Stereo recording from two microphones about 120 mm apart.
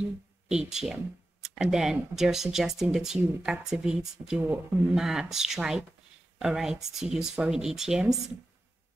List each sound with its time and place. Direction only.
0.0 s speech: 5° right (ahead or behind)
4.4 s speech: 15° right (ahead or behind)
4.9 s speech: 5° right (ahead or behind)